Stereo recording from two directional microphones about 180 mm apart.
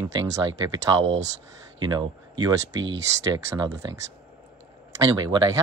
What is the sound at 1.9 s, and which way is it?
Speech, 20° right (ahead or behind).